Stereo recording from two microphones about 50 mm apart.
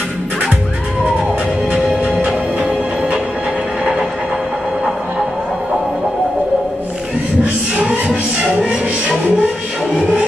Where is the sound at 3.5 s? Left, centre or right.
Centre.